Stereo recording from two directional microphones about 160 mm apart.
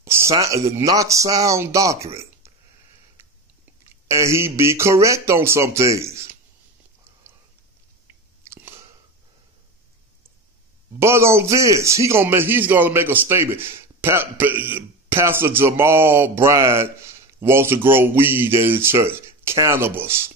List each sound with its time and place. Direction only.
0.0 s speech: 15° right (ahead or behind)
4.1 s a man's voice: 20° right (ahead or behind)
8.5 s chewing: 15° right (ahead or behind)
11.0 s a man's voice: 15° right (ahead or behind)